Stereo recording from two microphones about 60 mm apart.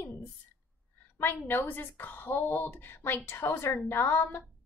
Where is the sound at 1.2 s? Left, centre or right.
Left.